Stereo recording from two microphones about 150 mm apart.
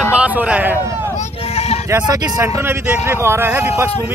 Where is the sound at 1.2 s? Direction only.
45° left (ahead or behind).